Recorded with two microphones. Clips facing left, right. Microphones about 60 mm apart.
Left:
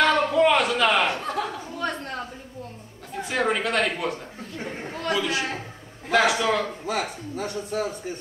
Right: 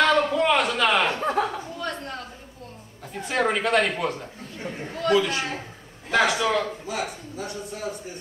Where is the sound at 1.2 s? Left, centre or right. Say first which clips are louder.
Right 4 dB; right.